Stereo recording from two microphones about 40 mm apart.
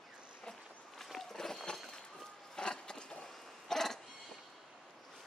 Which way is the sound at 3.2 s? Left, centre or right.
Centre.